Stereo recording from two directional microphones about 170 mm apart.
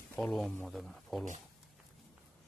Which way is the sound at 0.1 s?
Centre (ahead or behind).